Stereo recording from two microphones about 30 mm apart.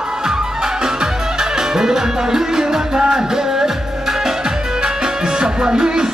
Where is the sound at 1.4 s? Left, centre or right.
Centre.